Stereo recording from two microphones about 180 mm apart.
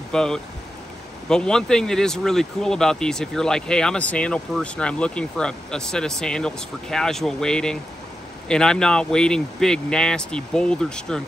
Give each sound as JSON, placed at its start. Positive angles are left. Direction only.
{"t": 0.1, "sound": "speech", "side_deg": 5}